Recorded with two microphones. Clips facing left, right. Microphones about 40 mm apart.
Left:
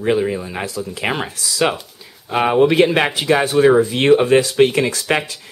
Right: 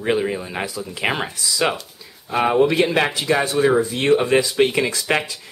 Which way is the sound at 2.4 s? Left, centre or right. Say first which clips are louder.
Left 3 dB; centre.